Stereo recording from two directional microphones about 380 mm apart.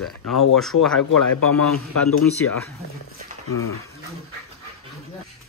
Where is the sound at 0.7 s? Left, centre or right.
Left.